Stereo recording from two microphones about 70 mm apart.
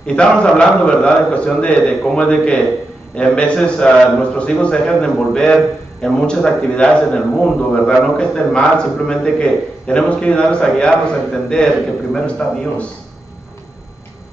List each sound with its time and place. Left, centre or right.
0.0 s a man's voice: centre